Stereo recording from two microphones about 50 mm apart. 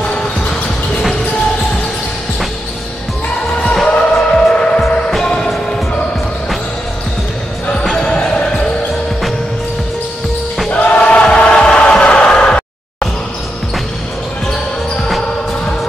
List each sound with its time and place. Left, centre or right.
3.7 s music: centre
7.9 s basketball bounce: centre
10.7 s choir: left